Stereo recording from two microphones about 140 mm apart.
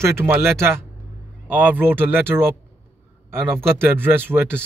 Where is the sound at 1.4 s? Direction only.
15° right (ahead or behind).